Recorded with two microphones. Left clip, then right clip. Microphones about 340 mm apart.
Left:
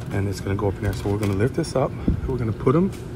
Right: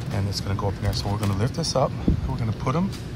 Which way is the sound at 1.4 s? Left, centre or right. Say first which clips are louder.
Even; right.